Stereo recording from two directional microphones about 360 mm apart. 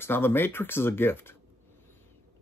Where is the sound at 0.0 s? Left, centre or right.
Centre.